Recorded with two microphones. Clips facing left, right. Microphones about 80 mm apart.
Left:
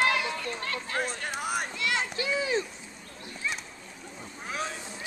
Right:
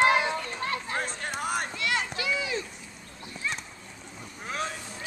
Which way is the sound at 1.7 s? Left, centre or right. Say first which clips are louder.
Right 1 dB; centre.